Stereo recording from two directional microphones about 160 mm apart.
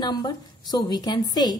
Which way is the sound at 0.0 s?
25° left (ahead or behind).